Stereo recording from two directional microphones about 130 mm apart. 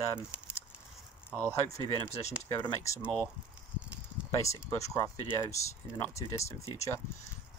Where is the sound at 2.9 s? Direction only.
25° left (ahead or behind).